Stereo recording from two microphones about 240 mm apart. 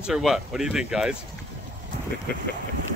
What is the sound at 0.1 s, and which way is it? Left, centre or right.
Speech, centre.